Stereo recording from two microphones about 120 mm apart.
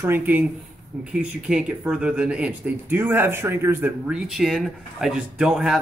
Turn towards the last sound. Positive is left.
turn(degrees=-5)  # may be behind; listen again after turning